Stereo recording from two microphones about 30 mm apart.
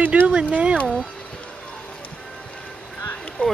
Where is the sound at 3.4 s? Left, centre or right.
Left.